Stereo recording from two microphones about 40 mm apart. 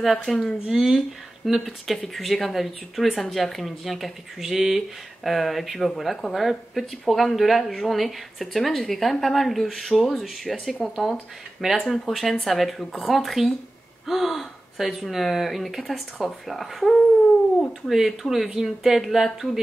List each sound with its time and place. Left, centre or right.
0.0 s speech: centre
0.7 s speech: centre
0.9 s speech: centre